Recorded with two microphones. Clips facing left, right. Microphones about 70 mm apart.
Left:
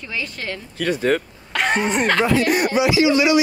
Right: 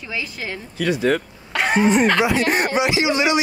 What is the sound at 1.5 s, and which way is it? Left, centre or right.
Speech, centre.